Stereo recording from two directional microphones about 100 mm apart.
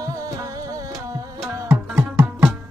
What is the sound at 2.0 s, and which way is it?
Music, 20° right (ahead or behind).